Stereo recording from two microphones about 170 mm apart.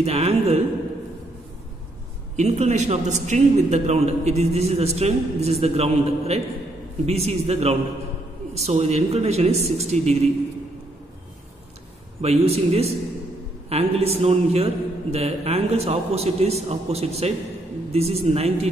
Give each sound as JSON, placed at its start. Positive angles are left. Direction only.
{"t": 0.0, "sound": "a man's voice", "side_deg": -40}
{"t": 2.3, "sound": "a man's voice", "side_deg": -40}
{"t": 12.2, "sound": "a man's voice", "side_deg": -35}